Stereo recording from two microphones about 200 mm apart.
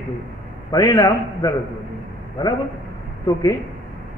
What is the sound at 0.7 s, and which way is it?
Speech, 20° left (ahead or behind).